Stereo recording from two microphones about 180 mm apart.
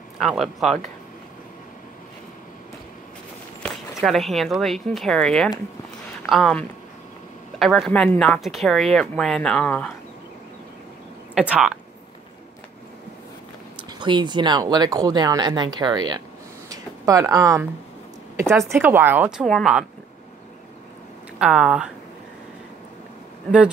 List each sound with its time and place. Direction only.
0.2 s speech: centre (ahead or behind)
3.6 s speech: centre (ahead or behind)
11.3 s speech: 5° right (ahead or behind)
13.7 s speech: 25° right (ahead or behind)
16.6 s a sound: 20° right (ahead or behind)
18.3 s speech: 15° right (ahead or behind)
21.4 s speech: 5° right (ahead or behind)